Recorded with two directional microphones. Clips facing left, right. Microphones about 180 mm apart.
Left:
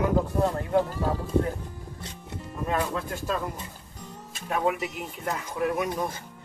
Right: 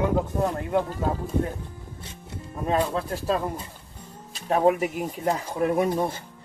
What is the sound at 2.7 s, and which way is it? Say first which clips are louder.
Speech: right 4 dB; 35° right (ahead or behind).